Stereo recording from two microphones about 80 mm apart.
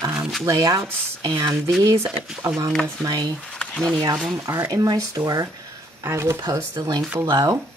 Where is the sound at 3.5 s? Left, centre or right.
Centre.